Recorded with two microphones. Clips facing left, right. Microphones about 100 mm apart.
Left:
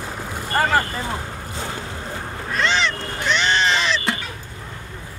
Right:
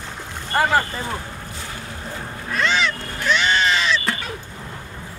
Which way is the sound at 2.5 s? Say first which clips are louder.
Even; 5° right (ahead or behind).